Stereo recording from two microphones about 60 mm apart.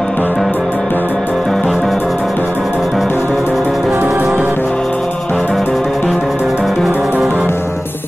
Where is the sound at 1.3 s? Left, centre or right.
Centre.